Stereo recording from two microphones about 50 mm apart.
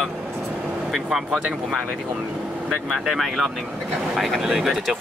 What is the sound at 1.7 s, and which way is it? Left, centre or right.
Speech, centre.